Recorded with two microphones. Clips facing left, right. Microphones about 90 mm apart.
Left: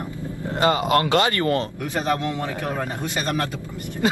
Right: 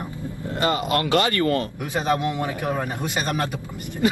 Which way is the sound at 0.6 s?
25° left (ahead or behind).